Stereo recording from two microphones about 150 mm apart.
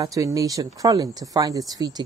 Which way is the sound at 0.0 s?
25° right (ahead or behind).